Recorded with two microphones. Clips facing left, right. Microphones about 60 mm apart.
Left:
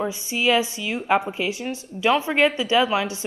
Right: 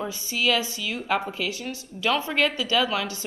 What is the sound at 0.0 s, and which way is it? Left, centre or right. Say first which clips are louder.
A woman's voice: left 3 dB; left.